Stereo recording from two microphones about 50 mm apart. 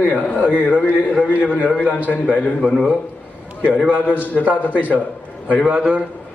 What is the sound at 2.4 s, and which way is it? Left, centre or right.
Speech, left.